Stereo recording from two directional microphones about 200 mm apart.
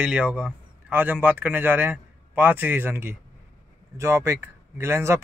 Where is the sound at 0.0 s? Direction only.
5° right (ahead or behind).